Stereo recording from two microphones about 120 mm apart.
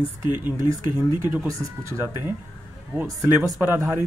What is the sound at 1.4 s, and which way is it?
Speech, 25° right (ahead or behind).